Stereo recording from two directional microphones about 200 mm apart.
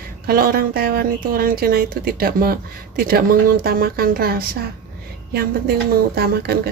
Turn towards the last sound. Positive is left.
turn(degrees=-50)  # may be behind; listen again after turning